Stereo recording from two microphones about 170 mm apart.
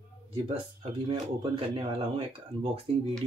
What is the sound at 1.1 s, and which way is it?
Speech, 35° right (ahead or behind).